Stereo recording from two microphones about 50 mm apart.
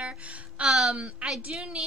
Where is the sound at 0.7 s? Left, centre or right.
Centre.